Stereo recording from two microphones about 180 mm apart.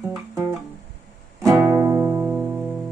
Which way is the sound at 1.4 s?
15° right (ahead or behind).